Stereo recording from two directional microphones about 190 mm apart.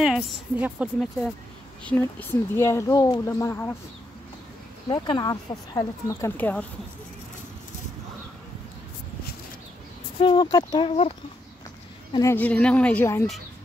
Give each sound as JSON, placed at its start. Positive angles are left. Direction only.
{"t": 0.0, "sound": "a woman's voice", "side_deg": -5}
{"t": 1.9, "sound": "speech", "side_deg": 10}
{"t": 4.8, "sound": "speech", "side_deg": 25}
{"t": 10.2, "sound": "speech", "side_deg": 25}
{"t": 12.1, "sound": "speech", "side_deg": 15}